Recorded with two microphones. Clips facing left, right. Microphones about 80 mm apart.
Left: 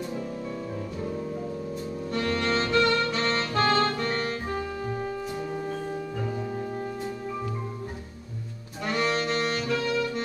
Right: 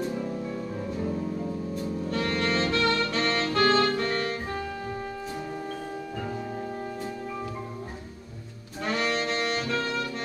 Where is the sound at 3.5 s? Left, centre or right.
Left.